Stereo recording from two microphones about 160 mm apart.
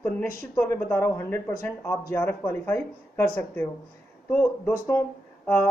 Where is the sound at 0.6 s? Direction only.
10° left (ahead or behind).